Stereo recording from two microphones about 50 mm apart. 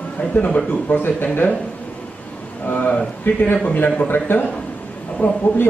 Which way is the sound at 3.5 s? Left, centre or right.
Left.